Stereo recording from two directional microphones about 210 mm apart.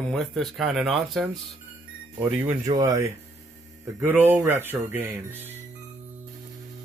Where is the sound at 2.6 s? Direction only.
15° right (ahead or behind).